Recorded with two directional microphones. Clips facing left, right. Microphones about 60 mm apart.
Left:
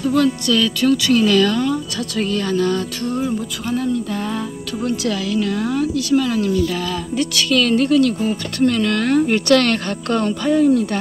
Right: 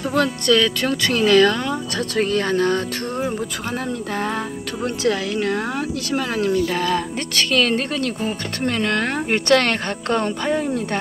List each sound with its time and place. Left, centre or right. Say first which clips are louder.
0.0 s speech: left 3 dB; right
4.8 s speech: even; right